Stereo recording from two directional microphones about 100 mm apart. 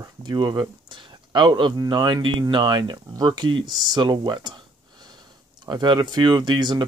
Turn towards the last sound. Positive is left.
turn(degrees=-50)  # may be behind; listen again after turning